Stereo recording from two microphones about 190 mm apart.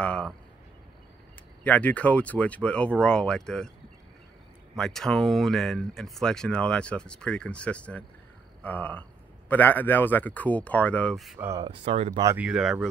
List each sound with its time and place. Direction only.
0.0 s speech: 5° left (ahead or behind)
1.6 s speech: 10° left (ahead or behind)
4.7 s speech: centre (ahead or behind)
11.3 s speech: 15° right (ahead or behind)
11.6 s speech: 30° right (ahead or behind)
12.2 s speech: 15° right (ahead or behind)
12.4 s speech: 5° right (ahead or behind)